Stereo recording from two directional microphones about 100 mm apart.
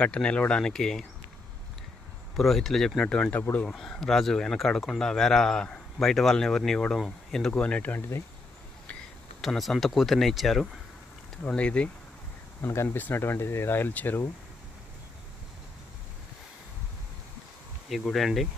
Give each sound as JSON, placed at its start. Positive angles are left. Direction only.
{"t": 0.0, "sound": "speech", "side_deg": 10}
{"t": 2.3, "sound": "speech", "side_deg": 0}
{"t": 3.7, "sound": "speech", "side_deg": 5}
{"t": 9.4, "sound": "speech", "side_deg": 0}
{"t": 11.4, "sound": "speech", "side_deg": 10}
{"t": 12.6, "sound": "speech", "side_deg": 25}
{"t": 17.8, "sound": "speech", "side_deg": 0}